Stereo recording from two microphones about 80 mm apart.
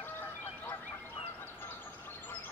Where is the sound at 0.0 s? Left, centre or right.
Left.